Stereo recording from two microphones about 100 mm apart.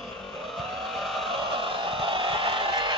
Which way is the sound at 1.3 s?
60° right (ahead or behind).